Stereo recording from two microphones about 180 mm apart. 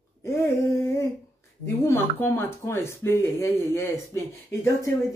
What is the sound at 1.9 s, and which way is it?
Speech, 15° left (ahead or behind).